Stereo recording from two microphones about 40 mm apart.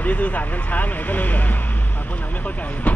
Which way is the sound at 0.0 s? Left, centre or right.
Left.